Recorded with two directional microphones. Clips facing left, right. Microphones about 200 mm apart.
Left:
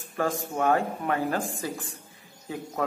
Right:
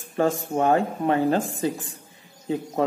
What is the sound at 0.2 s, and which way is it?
Speech, 25° right (ahead or behind).